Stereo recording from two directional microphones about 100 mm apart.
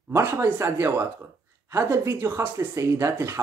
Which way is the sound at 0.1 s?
20° right (ahead or behind).